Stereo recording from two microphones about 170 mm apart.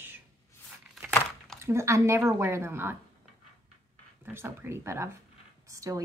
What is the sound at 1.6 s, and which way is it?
Speech, 15° right (ahead or behind).